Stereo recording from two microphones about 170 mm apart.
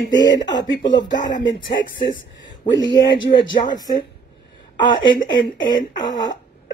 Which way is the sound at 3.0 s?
25° left (ahead or behind).